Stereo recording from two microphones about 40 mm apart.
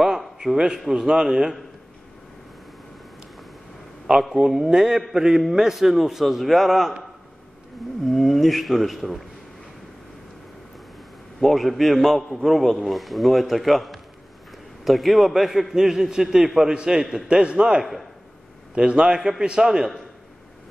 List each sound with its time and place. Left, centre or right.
0.8 s a man's voice: centre
4.1 s a man's voice: centre
8.0 s a man's voice: centre
11.3 s a man's voice: centre
16.7 s a man's voice: right